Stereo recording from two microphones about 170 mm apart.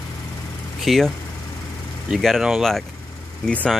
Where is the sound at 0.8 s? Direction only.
Centre (ahead or behind).